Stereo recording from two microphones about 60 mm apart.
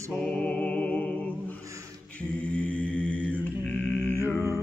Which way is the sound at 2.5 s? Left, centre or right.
Left.